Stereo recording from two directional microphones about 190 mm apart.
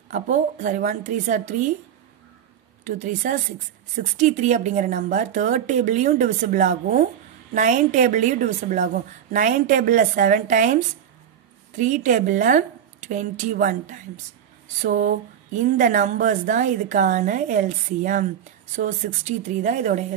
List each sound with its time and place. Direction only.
0.1 s a woman's voice: 40° right (ahead or behind)
2.8 s a woman's voice: 40° right (ahead or behind)
11.8 s a woman's voice: 40° right (ahead or behind)